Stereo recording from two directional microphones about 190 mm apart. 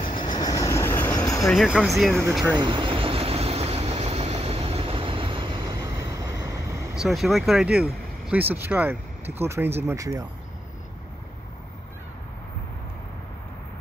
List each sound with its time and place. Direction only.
0.0 s train: 25° left (ahead or behind)
1.5 s speech: centre (ahead or behind)
2.5 s vehicle: 25° right (ahead or behind)
7.0 s speech: centre (ahead or behind); by 10.2 s 15° right (ahead or behind)